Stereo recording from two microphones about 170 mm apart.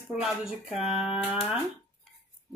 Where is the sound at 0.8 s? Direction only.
35° left (ahead or behind).